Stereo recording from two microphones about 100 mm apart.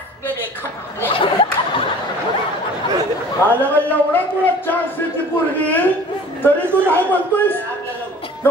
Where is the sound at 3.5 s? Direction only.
15° left (ahead or behind).